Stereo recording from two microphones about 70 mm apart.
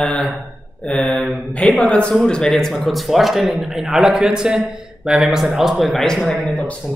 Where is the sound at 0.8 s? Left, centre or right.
Centre.